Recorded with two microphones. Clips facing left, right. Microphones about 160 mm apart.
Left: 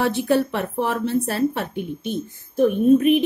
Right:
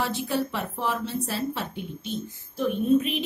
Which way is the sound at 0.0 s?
60° left (ahead or behind).